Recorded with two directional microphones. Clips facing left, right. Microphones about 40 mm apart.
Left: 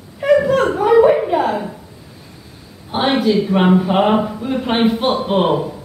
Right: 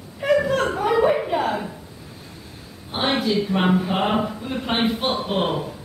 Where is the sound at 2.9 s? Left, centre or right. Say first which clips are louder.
Left 6 dB; centre.